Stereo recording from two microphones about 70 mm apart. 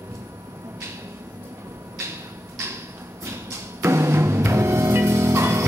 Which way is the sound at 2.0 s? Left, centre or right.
Right.